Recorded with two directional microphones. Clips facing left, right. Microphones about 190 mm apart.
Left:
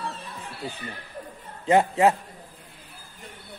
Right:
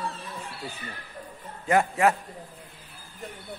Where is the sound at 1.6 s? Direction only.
25° left (ahead or behind).